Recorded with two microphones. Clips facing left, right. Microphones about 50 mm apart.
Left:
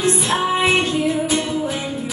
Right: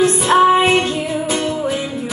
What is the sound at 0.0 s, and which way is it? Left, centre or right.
Music, right.